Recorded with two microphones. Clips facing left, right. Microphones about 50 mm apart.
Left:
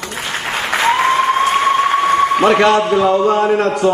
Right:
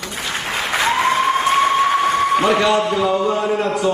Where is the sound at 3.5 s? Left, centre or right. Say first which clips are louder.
Left 4 dB; left.